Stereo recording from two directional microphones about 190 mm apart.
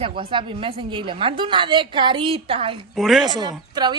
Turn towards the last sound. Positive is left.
turn(degrees=-20)  # may be behind; listen again after turning